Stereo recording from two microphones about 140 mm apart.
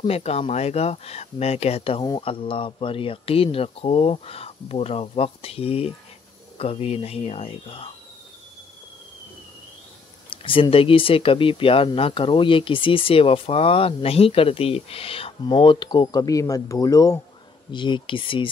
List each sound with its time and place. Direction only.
0.0 s speech: 50° left (ahead or behind)
10.3 s speech: 40° left (ahead or behind)